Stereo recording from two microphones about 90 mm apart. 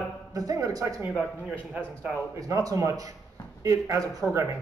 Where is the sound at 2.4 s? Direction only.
40° right (ahead or behind).